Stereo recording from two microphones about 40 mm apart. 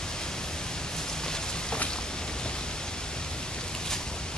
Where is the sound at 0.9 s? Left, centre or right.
Centre.